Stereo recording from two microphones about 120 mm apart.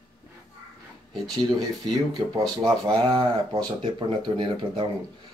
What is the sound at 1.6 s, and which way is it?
Speech, 35° right (ahead or behind).